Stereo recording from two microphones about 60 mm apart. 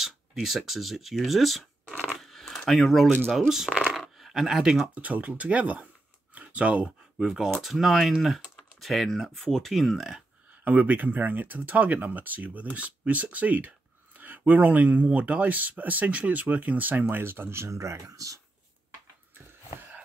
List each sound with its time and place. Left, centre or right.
0.0 s speech: centre
2.0 s a sound: centre
3.4 s speech: centre
4.9 s speech: right
6.3 s a sound: right
7.2 s speech: centre
10.6 s speech: right